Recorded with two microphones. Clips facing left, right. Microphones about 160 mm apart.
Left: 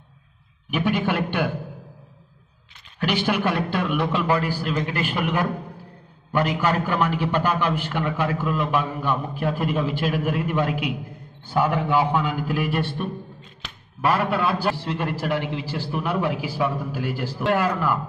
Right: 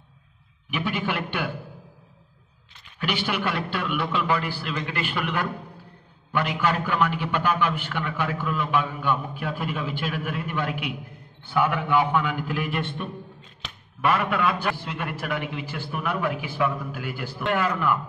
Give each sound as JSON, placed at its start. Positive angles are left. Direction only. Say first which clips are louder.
{"t": 0.7, "sound": "a man's voice", "louder": "left 5 dB", "side_deg": 45}
{"t": 3.0, "sound": "a man's voice", "louder": "left 5 dB", "side_deg": 45}
{"t": 14.0, "sound": "a man's voice", "louder": "left 1 dB", "side_deg": 35}